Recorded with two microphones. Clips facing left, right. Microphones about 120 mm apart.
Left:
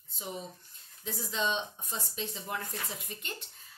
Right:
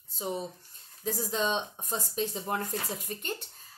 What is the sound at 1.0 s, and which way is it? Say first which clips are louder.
A woman's voice: right 4 dB; 40° right (ahead or behind).